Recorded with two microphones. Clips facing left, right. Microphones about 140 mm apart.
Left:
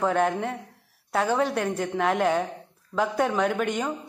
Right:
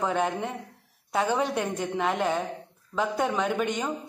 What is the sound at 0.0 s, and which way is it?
A woman's voice, 5° right (ahead or behind).